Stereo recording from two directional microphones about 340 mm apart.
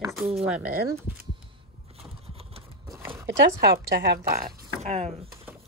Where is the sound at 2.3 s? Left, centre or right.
Centre.